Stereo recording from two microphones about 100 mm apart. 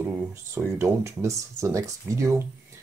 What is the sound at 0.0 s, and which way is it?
Speech, 25° right (ahead or behind).